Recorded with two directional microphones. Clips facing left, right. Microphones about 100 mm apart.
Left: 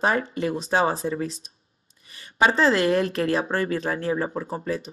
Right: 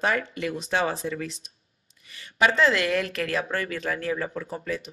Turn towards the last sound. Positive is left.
turn(degrees=35)  # may be behind; listen again after turning